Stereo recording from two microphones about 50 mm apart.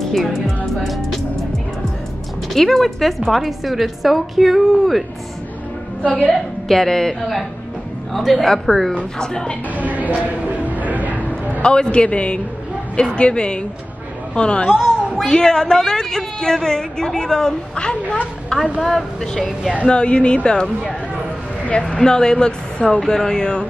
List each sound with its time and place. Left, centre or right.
0.1 s music: centre
2.5 s a woman's voice: centre
6.2 s a woman's voice: centre
9.8 s a sound: right
11.6 s a woman's voice: centre
18.5 s a woman's voice: centre
19.9 s a woman's voice: left